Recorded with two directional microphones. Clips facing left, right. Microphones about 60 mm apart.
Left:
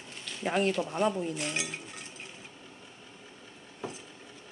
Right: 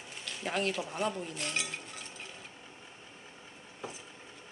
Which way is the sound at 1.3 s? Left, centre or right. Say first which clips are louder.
Left 2 dB; centre.